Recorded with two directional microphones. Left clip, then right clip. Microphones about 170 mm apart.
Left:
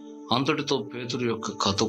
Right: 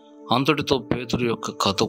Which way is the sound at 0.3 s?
45° right (ahead or behind).